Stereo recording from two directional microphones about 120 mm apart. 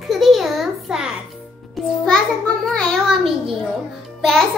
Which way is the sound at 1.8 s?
Centre (ahead or behind).